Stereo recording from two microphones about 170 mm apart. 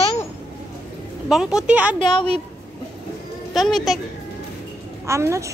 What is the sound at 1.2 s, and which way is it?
Speech, 5° right (ahead or behind).